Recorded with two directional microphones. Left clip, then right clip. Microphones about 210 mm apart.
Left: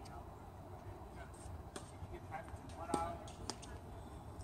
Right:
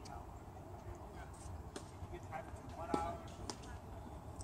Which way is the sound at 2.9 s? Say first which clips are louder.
Even; 50° left (ahead or behind).